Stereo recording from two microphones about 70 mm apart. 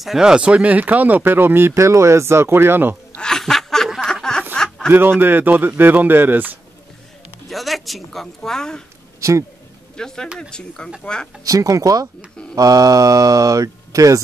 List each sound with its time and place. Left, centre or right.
0.0 s speech: centre; by 3.2 s right
3.2 s a sound: centre
4.8 s a man's voice: right
7.4 s speech: centre
9.9 s speech: centre
10.2 s speech: centre
10.5 s speech: centre
11.4 s speech: right